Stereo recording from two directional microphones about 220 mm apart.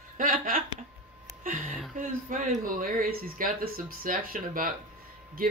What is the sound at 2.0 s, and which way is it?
A man's voice, 35° right (ahead or behind).